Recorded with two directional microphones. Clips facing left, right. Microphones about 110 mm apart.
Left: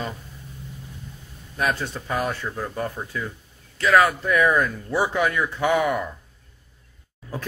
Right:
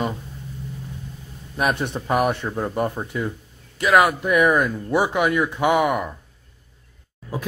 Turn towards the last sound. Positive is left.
turn(degrees=-15)  # may be behind; listen again after turning